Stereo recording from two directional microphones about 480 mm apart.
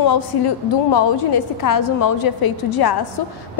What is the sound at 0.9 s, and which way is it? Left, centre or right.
A woman's voice, left.